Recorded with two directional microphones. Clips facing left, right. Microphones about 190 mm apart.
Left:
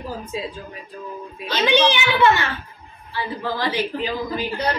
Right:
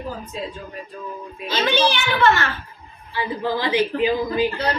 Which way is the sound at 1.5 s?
15° left (ahead or behind).